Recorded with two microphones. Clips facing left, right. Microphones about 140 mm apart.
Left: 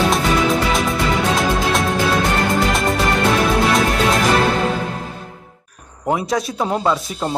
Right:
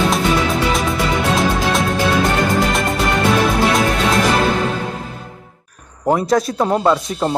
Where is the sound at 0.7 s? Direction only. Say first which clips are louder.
Even; centre (ahead or behind).